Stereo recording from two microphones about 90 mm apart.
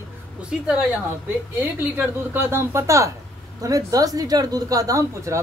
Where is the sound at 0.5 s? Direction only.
10° right (ahead or behind).